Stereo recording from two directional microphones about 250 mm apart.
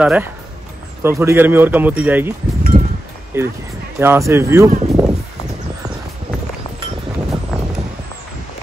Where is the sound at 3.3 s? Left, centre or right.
Centre.